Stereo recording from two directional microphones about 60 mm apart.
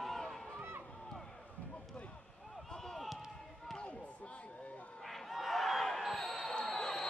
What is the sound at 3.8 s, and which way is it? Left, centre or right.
Slam, left.